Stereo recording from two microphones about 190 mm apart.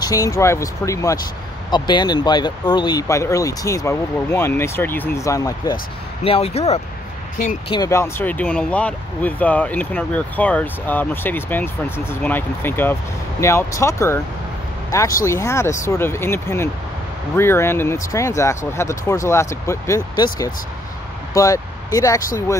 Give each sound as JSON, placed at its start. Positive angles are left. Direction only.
{"t": 0.0, "sound": "speech", "side_deg": 15}
{"t": 6.2, "sound": "speech", "side_deg": 30}
{"t": 7.7, "sound": "speech", "side_deg": 15}